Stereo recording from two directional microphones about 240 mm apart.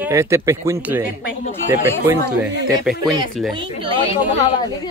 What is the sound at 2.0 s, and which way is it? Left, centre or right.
Speech, centre.